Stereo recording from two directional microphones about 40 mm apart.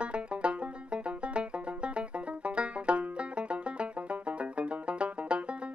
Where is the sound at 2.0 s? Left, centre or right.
Right.